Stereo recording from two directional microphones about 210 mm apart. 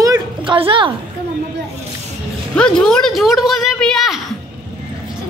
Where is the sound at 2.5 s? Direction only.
5° left (ahead or behind).